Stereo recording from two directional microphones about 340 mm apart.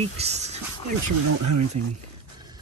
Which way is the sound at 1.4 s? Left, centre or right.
Right.